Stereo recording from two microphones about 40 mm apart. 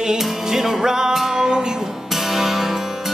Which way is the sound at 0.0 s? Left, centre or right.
Centre.